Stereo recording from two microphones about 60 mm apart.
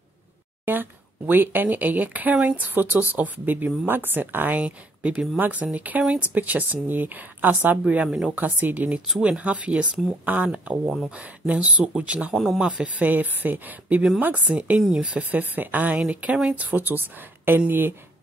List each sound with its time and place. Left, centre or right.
0.7 s a woman's voice: right
4.6 s speech: right
5.1 s speech: centre
5.4 s a woman's voice: right
8.1 s speech: centre
8.4 s speech: right
15.3 s a woman's voice: right